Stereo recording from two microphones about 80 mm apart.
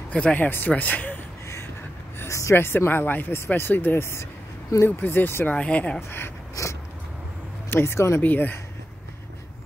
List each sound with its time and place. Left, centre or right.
0.1 s speech: centre
2.1 s a sound: left
2.5 s speech: left
4.8 s speech: left
5.9 s speech: left
6.5 s a sound: left
7.7 s speech: left
8.2 s speech: left